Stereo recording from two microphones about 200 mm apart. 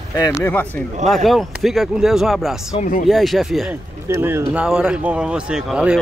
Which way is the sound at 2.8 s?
40° left (ahead or behind).